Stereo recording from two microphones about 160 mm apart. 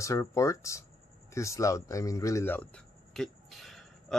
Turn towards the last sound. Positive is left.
turn(degrees=0)  # may be behind; listen again after turning